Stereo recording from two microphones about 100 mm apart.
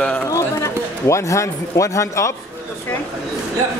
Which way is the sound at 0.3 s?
30° left (ahead or behind).